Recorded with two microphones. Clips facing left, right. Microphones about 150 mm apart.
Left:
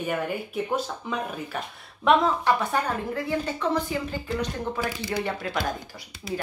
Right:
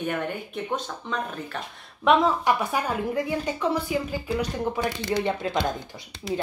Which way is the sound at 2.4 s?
10° right (ahead or behind).